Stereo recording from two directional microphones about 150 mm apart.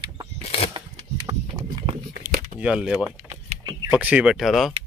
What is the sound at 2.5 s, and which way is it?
Speech, 5° right (ahead or behind).